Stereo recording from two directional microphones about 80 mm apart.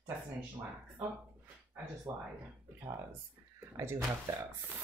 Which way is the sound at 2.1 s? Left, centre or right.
Right.